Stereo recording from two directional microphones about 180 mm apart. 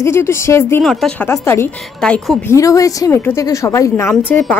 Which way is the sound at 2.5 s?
20° left (ahead or behind).